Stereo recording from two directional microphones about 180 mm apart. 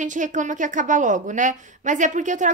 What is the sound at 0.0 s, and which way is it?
Speech, 45° right (ahead or behind).